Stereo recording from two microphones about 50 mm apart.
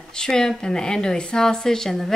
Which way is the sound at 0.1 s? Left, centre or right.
Centre.